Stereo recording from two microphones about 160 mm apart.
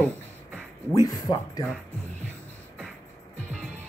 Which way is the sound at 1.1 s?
25° left (ahead or behind).